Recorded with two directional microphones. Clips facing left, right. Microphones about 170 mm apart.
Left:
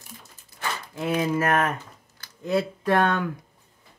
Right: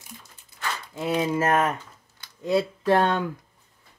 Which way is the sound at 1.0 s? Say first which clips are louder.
Even; 25° right (ahead or behind).